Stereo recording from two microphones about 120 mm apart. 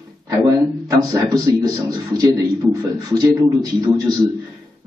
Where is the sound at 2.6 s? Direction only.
15° right (ahead or behind).